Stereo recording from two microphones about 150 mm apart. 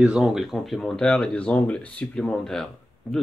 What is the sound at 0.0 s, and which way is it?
Speech, 5° right (ahead or behind).